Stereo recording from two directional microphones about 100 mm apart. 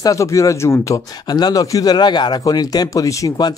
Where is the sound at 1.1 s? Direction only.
45° left (ahead or behind).